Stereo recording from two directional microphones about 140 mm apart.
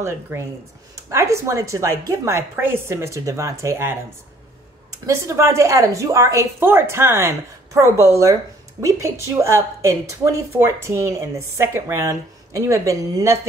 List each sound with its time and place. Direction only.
0.0 s a woman's voice: 20° right (ahead or behind)
5.0 s a woman's voice: 20° right (ahead or behind)